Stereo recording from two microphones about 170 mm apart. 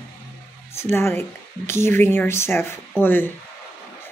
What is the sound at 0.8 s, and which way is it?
Speech, 15° left (ahead or behind).